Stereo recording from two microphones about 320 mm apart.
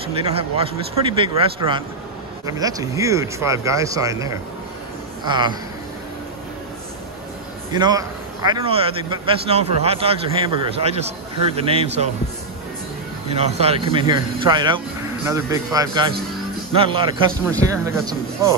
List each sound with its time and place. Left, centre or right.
0.2 s a man's voice: centre
7.7 s a man's voice: centre
13.3 s a man's voice: centre